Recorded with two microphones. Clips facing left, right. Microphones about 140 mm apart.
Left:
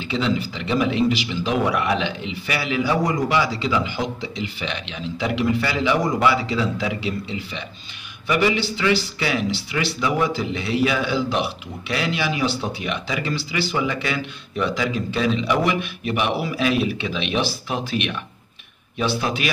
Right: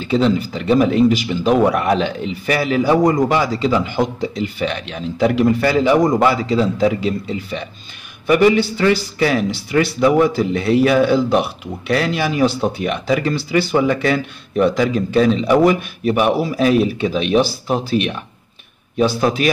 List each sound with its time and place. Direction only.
0.0 s a man's voice: 45° right (ahead or behind)